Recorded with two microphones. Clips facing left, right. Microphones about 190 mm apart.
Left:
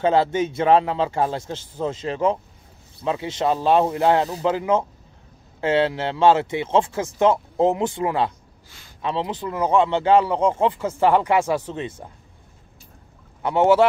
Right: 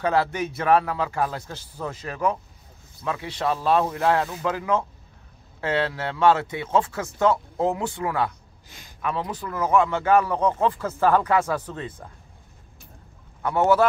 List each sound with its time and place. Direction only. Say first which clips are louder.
0.0 s speech: left 4 dB; 25° left (ahead or behind)
8.6 s a sound: right 3 dB; 15° right (ahead or behind)
9.0 s speech: left 3 dB; 25° left (ahead or behind)
13.4 s speech: left 3 dB; 25° left (ahead or behind)